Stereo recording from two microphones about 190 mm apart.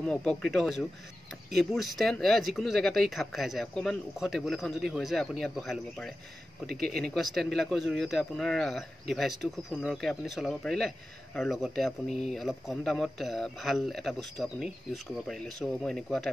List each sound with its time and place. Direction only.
0.0 s speech: 5° left (ahead or behind)
12.1 s speech: 35° left (ahead or behind)
12.4 s speech: centre (ahead or behind)